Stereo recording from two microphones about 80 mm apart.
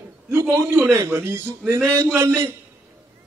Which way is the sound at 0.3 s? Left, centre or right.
Right.